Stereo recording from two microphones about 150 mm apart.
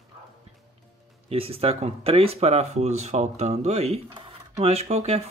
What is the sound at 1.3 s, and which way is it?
Speech, 40° right (ahead or behind).